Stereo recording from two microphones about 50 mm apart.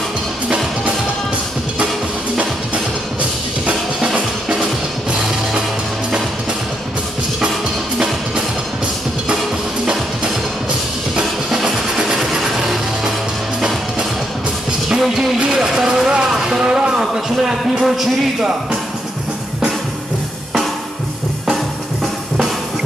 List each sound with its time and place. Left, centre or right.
2.3 s music: right
11.1 s music: centre
14.9 s music: centre
17.0 s a man's voice: centre